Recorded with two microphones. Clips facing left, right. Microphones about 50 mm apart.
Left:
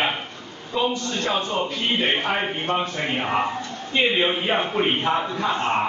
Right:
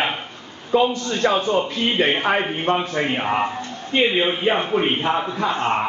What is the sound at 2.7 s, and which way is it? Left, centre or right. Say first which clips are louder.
Speech: right 4 dB; right.